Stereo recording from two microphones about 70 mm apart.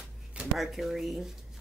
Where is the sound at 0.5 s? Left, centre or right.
Centre.